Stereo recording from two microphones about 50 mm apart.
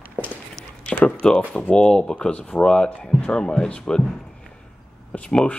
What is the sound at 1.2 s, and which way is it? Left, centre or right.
Speech, centre.